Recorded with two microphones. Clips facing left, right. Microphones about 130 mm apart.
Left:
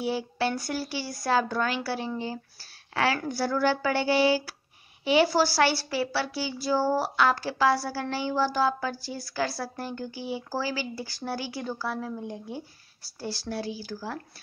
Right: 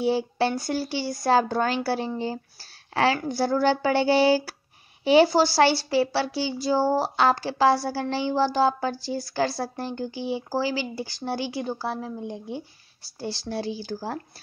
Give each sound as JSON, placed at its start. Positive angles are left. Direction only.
{"t": 0.0, "sound": "a woman's voice", "side_deg": -30}
{"t": 5.3, "sound": "speech", "side_deg": -25}